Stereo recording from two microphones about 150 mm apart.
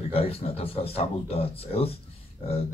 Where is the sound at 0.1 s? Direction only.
40° left (ahead or behind).